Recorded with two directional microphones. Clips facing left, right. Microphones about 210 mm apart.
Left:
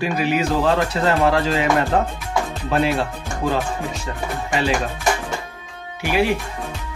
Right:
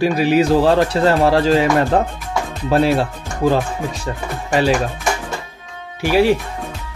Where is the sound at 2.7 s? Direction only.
35° right (ahead or behind).